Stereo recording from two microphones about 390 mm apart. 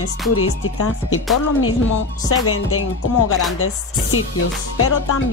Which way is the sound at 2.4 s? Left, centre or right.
Left.